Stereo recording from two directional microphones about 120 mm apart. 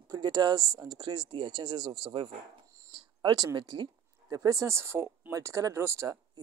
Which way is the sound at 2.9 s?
40° right (ahead or behind).